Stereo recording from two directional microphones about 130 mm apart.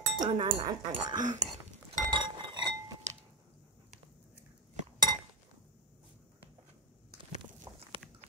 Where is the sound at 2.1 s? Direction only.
35° right (ahead or behind).